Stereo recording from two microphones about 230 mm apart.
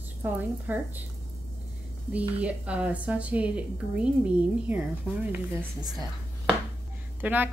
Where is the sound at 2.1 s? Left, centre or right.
Centre.